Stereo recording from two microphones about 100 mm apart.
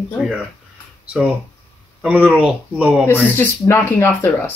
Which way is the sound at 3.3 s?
25° left (ahead or behind).